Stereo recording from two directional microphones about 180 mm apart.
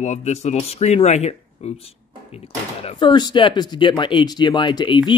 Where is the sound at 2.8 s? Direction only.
25° left (ahead or behind).